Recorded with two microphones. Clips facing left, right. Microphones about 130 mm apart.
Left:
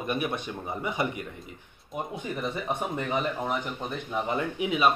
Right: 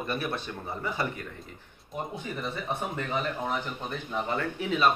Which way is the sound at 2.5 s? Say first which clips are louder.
Left 2 dB; 10° left (ahead or behind).